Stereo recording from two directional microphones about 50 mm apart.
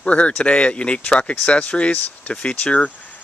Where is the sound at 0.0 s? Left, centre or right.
Left.